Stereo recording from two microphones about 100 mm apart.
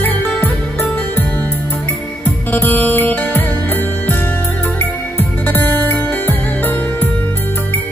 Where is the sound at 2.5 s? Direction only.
20° left (ahead or behind).